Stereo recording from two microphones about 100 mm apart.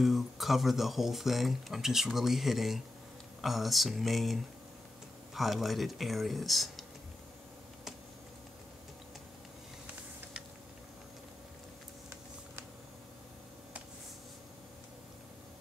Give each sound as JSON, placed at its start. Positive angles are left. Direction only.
{"t": 0.0, "sound": "speech", "side_deg": 0}